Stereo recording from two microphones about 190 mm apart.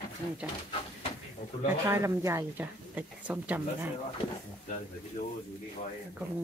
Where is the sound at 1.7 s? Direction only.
15° right (ahead or behind).